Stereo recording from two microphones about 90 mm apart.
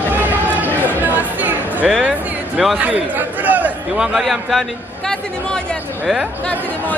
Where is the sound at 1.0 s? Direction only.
20° right (ahead or behind).